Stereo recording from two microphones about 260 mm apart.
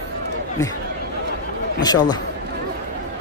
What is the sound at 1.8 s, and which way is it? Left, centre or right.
Speech, centre.